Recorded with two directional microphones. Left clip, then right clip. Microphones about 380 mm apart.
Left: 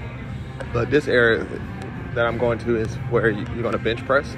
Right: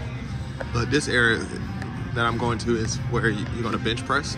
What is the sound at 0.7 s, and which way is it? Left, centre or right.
Speech, centre.